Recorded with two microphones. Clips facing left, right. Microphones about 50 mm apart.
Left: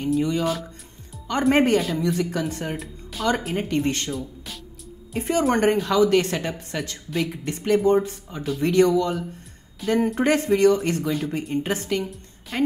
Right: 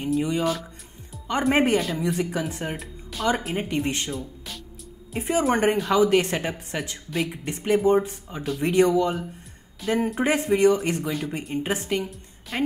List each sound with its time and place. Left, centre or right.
0.2 s speech: centre
6.0 s speech: centre
7.1 s speech: centre
7.5 s speech: centre
9.8 s speech: centre
11.1 s speech: centre
12.1 s a woman's voice: centre